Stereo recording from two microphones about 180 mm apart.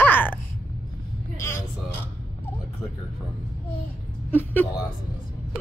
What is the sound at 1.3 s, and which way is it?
Music, 15° left (ahead or behind).